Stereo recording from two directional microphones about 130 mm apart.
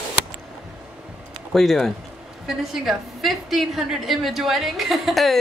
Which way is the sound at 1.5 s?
5° left (ahead or behind).